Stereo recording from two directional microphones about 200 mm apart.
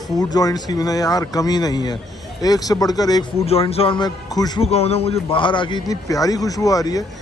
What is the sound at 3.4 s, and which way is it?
A man's voice, 30° left (ahead or behind).